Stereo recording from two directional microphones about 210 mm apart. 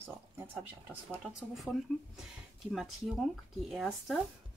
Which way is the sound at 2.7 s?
Centre (ahead or behind).